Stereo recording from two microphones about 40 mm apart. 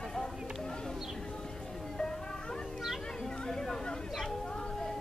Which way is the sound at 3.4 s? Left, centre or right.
Centre.